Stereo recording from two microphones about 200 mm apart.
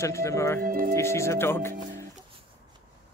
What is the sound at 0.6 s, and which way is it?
Speech, 45° right (ahead or behind).